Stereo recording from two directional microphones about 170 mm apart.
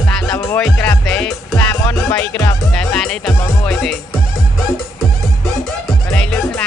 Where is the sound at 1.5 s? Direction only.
20° left (ahead or behind).